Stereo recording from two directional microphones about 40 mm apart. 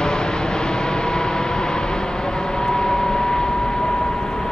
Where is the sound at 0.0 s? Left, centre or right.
Centre.